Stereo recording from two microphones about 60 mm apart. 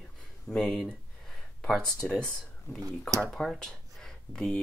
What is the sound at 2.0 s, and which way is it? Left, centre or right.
Speech, centre.